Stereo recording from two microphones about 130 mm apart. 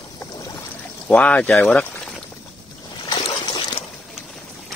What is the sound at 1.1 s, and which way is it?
Speech, 10° left (ahead or behind).